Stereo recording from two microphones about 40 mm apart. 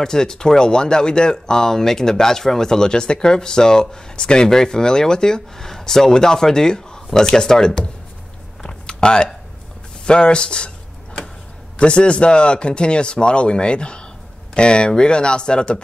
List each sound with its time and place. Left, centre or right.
0.0 s speech: centre
8.6 s a sound: left
10.0 s speech: left
11.8 s speech: left